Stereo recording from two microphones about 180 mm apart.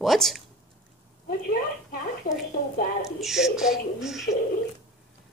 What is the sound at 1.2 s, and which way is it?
A woman's voice, 55° left (ahead or behind).